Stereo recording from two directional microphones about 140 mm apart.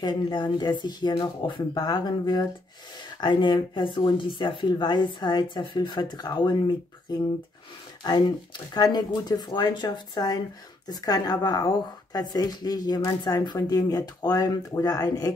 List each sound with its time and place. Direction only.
0.0 s speech: 35° left (ahead or behind)
8.0 s speech: 30° left (ahead or behind)